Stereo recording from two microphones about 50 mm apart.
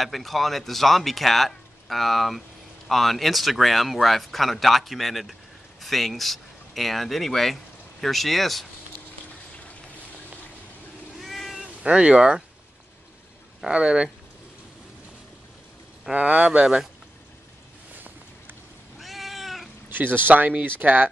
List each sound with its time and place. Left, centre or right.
0.0 s speech: centre
11.1 s cat: centre
11.6 s speech: right
13.7 s speech: centre
16.1 s speech: right
17.9 s a sound: right
18.9 s cat: centre
19.9 s speech: right